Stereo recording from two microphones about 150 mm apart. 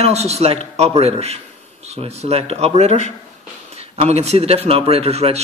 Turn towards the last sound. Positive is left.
turn(degrees=-45)  # may be behind; listen again after turning